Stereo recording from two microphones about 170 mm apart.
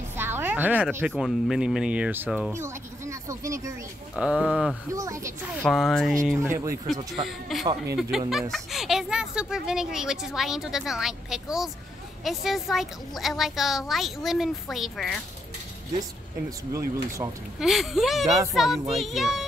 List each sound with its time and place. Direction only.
0.1 s music: 15° right (ahead or behind)
0.9 s speech: 5° right (ahead or behind)
4.2 s speech: 5° right (ahead or behind)
4.9 s speech: 20° right (ahead or behind)
5.6 s speech: centre (ahead or behind)
6.4 s speech: 15° right (ahead or behind)
7.2 s speech: centre (ahead or behind)
16.4 s speech: 20° right (ahead or behind)
17.6 s speech: centre (ahead or behind)